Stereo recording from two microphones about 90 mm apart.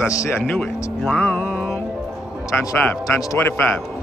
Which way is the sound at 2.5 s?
20° left (ahead or behind).